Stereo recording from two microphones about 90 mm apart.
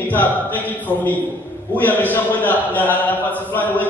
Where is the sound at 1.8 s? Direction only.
20° left (ahead or behind).